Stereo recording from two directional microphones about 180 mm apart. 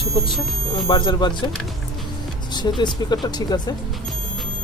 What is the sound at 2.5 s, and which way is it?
Speech, 25° left (ahead or behind).